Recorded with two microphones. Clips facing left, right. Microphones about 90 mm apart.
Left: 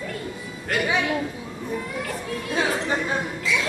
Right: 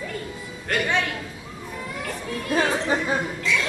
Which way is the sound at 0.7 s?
5° left (ahead or behind).